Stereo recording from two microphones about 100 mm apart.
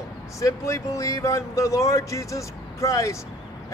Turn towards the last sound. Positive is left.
turn(degrees=30)  # may be behind; listen again after turning